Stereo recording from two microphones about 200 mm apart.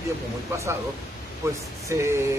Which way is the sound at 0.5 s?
10° right (ahead or behind).